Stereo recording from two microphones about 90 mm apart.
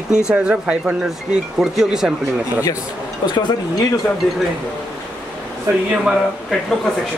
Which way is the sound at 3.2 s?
50° left (ahead or behind).